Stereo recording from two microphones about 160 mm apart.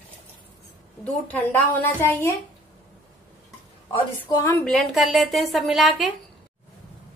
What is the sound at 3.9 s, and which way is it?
Speech, 25° left (ahead or behind).